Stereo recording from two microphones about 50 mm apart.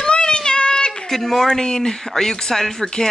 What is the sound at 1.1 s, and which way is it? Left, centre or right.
Speech, centre.